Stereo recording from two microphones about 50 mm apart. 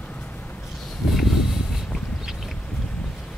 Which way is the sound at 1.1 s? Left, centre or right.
Centre.